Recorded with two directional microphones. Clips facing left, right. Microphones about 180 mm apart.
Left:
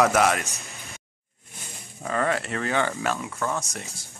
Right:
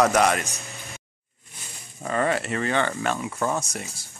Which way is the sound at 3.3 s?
15° right (ahead or behind).